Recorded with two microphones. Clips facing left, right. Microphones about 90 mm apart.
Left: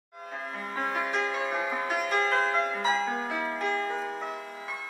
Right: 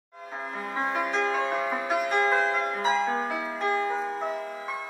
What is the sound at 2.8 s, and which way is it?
Music, 35° right (ahead or behind).